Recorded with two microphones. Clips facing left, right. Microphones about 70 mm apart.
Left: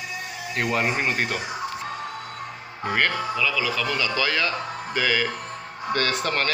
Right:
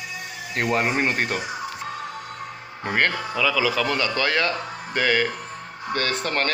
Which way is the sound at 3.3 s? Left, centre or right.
Right.